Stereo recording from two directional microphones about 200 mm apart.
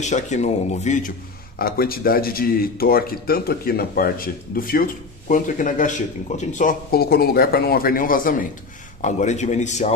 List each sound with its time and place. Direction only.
0.0 s speech: 35° left (ahead or behind)
1.6 s speech: 50° left (ahead or behind)